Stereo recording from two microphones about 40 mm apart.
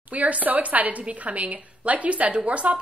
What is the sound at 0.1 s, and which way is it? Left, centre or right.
A woman's voice, right.